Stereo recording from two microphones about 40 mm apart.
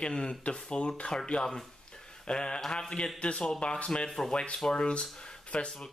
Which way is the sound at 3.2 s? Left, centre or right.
Left.